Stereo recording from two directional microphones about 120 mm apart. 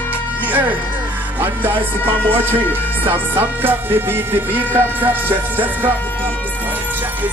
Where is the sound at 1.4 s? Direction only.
20° right (ahead or behind).